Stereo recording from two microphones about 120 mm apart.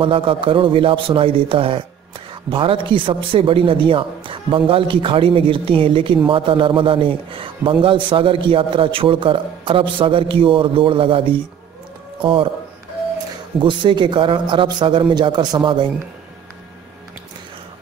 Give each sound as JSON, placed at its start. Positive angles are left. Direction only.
{"t": 0.0, "sound": "a woman's voice", "side_deg": -50}
{"t": 13.6, "sound": "a man's voice", "side_deg": -40}